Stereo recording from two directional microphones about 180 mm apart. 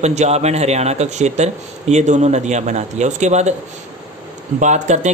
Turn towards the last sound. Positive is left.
turn(degrees=-40)  # may be behind; listen again after turning